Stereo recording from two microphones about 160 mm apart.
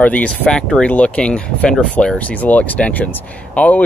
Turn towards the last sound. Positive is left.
turn(degrees=10)  # may be behind; listen again after turning